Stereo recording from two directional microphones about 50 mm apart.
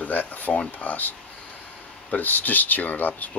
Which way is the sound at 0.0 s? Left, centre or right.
Left.